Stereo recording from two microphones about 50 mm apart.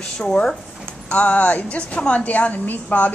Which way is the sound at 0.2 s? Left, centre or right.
Centre.